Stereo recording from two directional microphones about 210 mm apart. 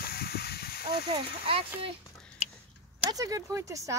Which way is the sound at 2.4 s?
30° left (ahead or behind).